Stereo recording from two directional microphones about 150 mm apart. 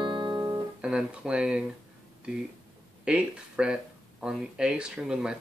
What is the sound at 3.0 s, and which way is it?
Speech, 5° right (ahead or behind).